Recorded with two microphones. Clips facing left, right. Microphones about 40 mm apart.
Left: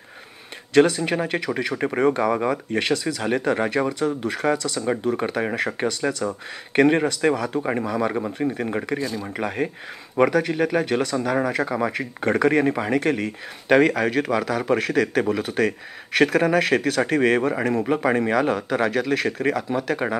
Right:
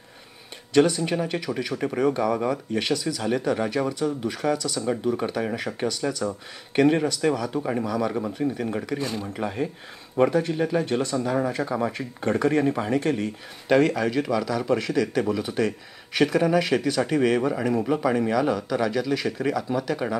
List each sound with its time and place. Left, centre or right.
1.0 s speech: left
9.4 s speech: left
11.4 s speech: left
11.8 s speech: left
17.8 s speech: left